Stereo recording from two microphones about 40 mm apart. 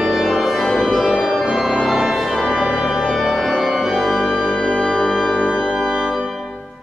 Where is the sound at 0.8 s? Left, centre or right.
Centre.